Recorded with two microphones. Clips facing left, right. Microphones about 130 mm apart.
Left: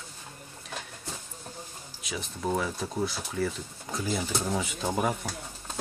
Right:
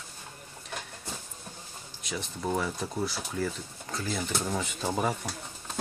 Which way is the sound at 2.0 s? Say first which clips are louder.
Even; centre (ahead or behind).